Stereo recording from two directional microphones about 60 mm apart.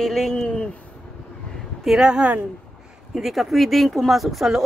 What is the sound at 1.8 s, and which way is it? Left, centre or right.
Speech, centre.